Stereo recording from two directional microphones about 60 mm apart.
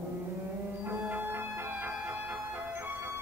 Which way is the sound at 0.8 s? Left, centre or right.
Right.